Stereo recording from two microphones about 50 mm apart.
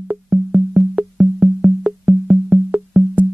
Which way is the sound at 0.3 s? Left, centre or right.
Right.